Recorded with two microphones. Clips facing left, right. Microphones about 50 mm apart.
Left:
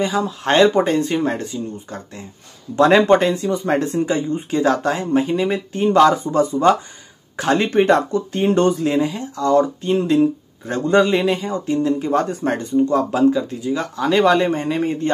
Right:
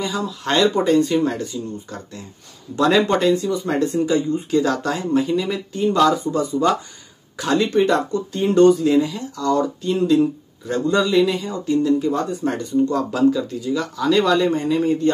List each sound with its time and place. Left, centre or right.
0.0 s speech: left
12.1 s speech: left
12.5 s speech: left